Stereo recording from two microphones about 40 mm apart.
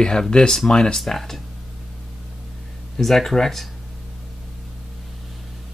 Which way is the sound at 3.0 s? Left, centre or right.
Centre.